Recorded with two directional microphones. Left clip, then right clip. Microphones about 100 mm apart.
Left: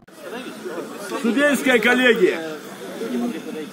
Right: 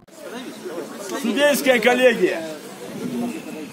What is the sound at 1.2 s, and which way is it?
A man's voice, 55° right (ahead or behind).